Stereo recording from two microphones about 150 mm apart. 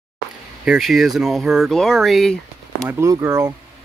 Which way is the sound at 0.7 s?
Centre (ahead or behind).